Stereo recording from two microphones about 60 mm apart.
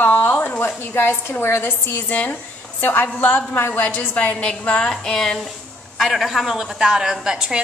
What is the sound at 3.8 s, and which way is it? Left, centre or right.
A woman's voice, left.